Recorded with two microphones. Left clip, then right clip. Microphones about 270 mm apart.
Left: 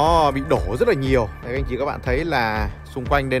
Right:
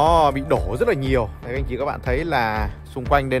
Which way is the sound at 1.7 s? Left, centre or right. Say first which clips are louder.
Even; centre.